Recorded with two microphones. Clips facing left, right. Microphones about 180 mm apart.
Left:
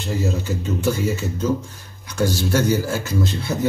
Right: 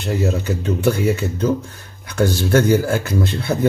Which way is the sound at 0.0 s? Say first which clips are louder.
Right 3 dB; 65° right (ahead or behind).